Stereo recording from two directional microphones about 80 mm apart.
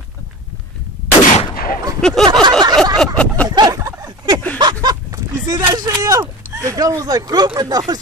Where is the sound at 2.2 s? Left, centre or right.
Right.